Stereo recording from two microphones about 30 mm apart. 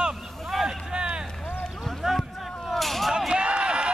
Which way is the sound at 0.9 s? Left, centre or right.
Right.